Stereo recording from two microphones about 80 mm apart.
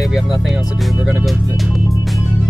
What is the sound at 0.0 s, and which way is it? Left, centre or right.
Music, centre.